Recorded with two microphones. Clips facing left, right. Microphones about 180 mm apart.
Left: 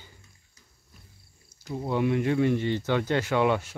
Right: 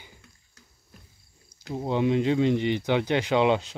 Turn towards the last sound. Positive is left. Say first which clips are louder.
# right 2 dB
turn(degrees=-20)  # may be behind; listen again after turning